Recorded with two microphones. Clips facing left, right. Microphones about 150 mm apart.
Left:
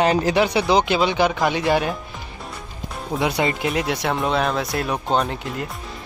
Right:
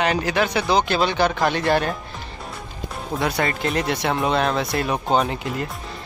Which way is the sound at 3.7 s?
5° left (ahead or behind).